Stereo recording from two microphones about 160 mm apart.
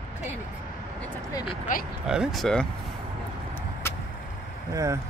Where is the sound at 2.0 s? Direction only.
Centre (ahead or behind).